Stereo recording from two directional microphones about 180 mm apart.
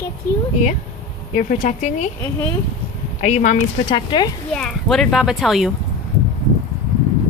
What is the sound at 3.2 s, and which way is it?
Speech, 40° left (ahead or behind).